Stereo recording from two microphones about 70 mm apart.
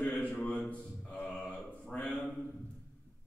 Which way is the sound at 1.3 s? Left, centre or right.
Centre.